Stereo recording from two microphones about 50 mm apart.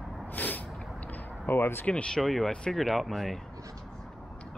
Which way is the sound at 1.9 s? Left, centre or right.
Centre.